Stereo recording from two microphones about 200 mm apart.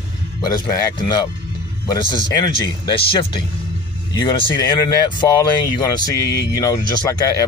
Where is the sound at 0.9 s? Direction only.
20° left (ahead or behind).